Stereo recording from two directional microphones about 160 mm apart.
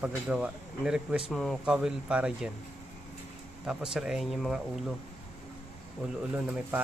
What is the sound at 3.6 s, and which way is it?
Speech, 5° right (ahead or behind).